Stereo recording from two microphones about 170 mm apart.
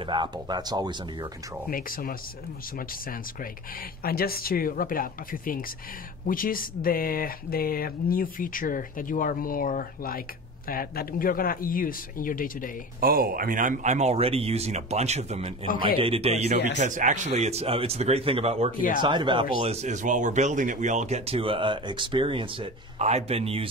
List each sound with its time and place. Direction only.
0.0 s speech: 25° right (ahead or behind)
1.7 s speech: 55° left (ahead or behind)
4.0 s speech: 60° left (ahead or behind)
13.0 s speech: 60° right (ahead or behind); by 16.3 s 35° right (ahead or behind)
16.7 s speech: 50° right (ahead or behind)